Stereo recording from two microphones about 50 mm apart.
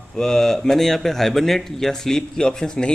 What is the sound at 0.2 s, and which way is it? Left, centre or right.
A man's voice, centre.